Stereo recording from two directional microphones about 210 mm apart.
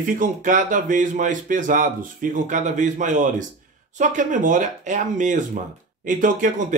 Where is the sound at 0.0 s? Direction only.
40° right (ahead or behind).